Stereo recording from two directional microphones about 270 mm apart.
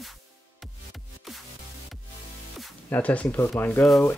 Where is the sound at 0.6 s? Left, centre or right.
Centre.